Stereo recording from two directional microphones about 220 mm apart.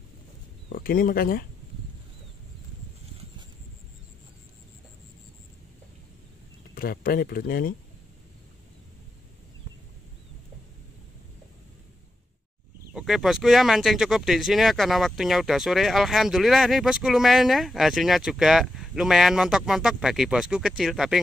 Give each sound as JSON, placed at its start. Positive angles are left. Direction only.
{"t": 0.7, "sound": "speech", "side_deg": 40}
{"t": 6.7, "sound": "speech", "side_deg": 40}
{"t": 12.9, "sound": "speech", "side_deg": 0}